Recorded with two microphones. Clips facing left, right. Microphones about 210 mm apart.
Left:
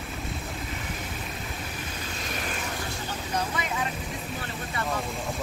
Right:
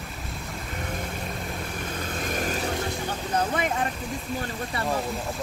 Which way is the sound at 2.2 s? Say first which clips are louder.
Right 6 dB; 45° right (ahead or behind).